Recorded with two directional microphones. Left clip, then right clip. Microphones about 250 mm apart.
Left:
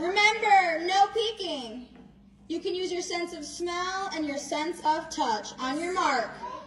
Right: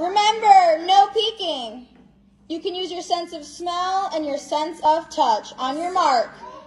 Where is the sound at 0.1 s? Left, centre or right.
Centre.